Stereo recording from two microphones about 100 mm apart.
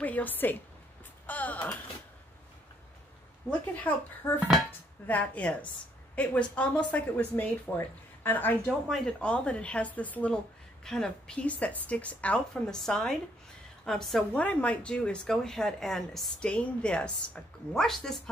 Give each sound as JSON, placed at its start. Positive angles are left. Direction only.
{"t": 0.0, "sound": "speech", "side_deg": 15}
{"t": 3.4, "sound": "speech", "side_deg": 15}
{"t": 8.6, "sound": "a woman's voice", "side_deg": 5}